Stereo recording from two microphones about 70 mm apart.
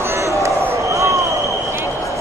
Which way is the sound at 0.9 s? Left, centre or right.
Right.